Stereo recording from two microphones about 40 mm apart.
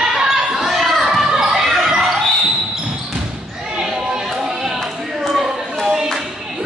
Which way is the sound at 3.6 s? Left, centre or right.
Centre.